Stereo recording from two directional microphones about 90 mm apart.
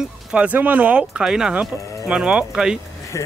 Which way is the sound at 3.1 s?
40° left (ahead or behind).